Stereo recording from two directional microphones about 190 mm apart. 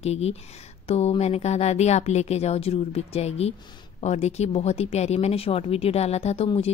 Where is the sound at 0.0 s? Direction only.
35° left (ahead or behind).